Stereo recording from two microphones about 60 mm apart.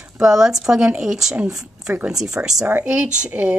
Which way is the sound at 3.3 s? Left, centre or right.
Right.